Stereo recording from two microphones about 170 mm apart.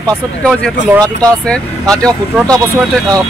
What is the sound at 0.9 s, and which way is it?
Speech, 20° right (ahead or behind).